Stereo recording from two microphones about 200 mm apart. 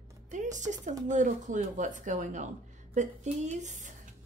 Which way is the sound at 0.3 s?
35° right (ahead or behind).